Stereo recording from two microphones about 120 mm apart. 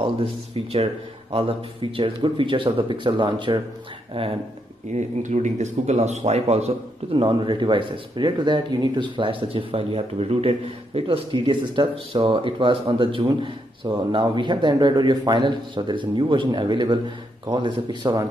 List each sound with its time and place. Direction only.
0.0 s speech: 50° right (ahead or behind)
4.9 s speech: 80° right; by 6.7 s 60° right (ahead or behind)
7.2 s speech: 40° right (ahead or behind)
11.0 s a man's voice: 45° right (ahead or behind)